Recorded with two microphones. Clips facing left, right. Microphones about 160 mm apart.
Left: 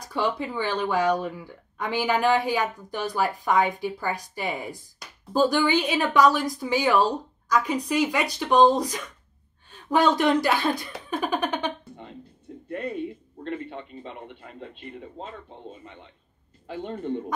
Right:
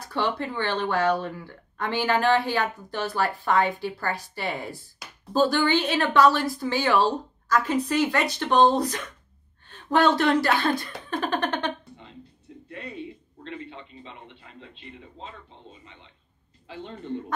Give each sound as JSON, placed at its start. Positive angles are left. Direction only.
{"t": 0.0, "sound": "speech", "side_deg": 10}
{"t": 12.6, "sound": "a man's voice", "side_deg": 50}